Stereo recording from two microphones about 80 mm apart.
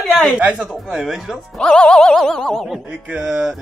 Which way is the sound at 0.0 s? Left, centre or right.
Centre.